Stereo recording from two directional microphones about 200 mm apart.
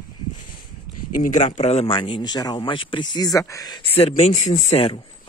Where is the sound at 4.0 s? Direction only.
30° left (ahead or behind).